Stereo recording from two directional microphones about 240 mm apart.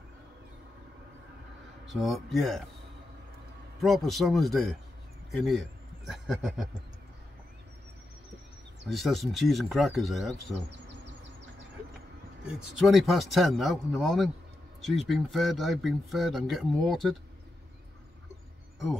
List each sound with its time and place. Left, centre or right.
1.9 s speech: centre
3.8 s a man's voice: centre
8.8 s speech: centre
12.4 s speech: centre